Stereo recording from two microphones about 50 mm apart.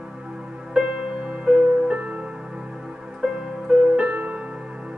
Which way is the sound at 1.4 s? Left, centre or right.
Right.